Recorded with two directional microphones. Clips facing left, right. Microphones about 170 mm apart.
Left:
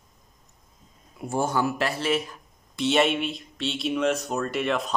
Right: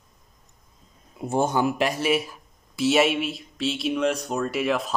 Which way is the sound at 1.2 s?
20° right (ahead or behind).